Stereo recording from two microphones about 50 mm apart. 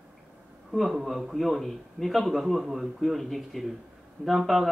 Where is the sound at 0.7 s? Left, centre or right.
Centre.